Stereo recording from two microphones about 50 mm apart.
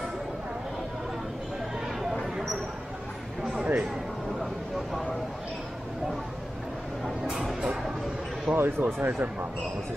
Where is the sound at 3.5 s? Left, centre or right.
Right.